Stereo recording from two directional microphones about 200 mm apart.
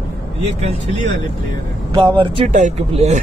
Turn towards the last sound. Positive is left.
turn(degrees=-35)  # may be behind; listen again after turning